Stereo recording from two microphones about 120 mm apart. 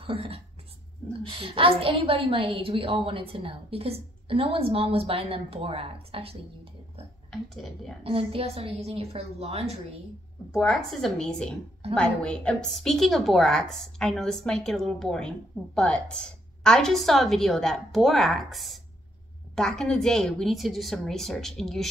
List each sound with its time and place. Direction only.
0.0 s a woman's voice: 50° right (ahead or behind)
7.2 s a woman's voice: 5° left (ahead or behind)
8.0 s a woman's voice: 55° right (ahead or behind)
10.5 s a woman's voice: 5° left (ahead or behind)